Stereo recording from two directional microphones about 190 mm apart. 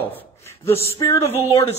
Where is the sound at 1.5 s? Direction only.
30° left (ahead or behind).